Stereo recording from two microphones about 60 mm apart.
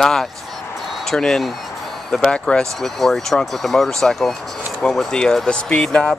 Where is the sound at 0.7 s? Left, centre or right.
Centre.